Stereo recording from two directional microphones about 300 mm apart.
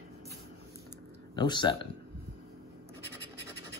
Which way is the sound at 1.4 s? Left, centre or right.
Centre.